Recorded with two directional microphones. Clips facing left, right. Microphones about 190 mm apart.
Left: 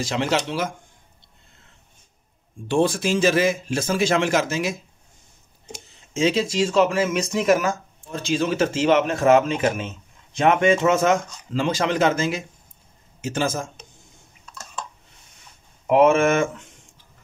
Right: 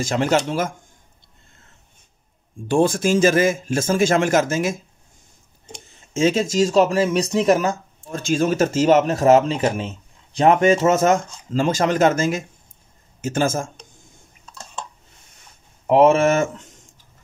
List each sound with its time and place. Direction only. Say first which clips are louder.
0.0 s speech: right 4 dB; 45° right (ahead or behind)
2.7 s speech: right 3 dB; 45° right (ahead or behind)
6.1 s speech: right 3 dB; 45° right (ahead or behind); by 7.7 s 30° right (ahead or behind)
8.1 s speech: right 3 dB; 45° right (ahead or behind)
15.9 s speech: right 2 dB; 35° right (ahead or behind)